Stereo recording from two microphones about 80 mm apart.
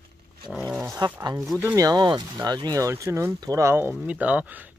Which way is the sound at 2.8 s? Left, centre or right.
Right.